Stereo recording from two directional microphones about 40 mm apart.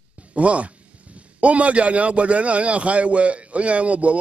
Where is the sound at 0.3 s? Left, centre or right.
Right.